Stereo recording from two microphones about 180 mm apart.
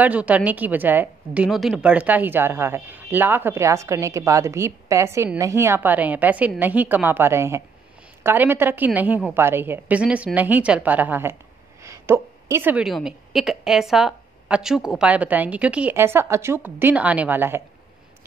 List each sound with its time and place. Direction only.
0.0 s a woman's voice: 10° right (ahead or behind)